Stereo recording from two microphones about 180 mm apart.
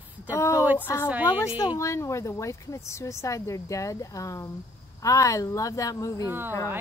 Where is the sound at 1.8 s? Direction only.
15° left (ahead or behind).